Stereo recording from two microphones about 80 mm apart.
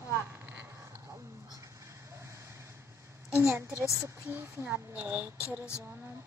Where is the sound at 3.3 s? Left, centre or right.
Right.